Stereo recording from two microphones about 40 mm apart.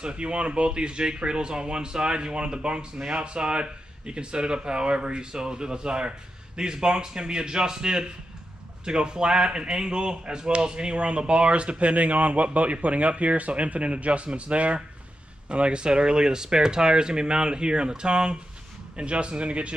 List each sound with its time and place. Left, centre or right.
0.0 s speech: right